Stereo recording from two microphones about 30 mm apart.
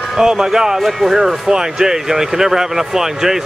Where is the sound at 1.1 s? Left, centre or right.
Centre.